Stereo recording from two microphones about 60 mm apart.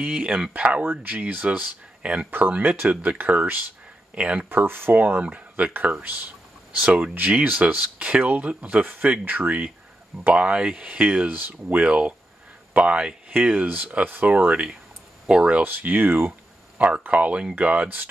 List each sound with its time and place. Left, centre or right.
0.0 s speech: centre
4.5 s speech: right
10.3 s speech: centre
15.6 s speech: right
16.7 s speech: right